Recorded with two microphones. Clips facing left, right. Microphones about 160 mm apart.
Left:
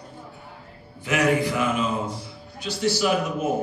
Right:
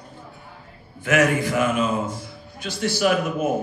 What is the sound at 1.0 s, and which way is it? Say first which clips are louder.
A man's voice: right 2 dB; 50° right (ahead or behind).